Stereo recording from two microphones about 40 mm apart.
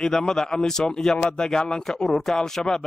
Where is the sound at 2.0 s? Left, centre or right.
Centre.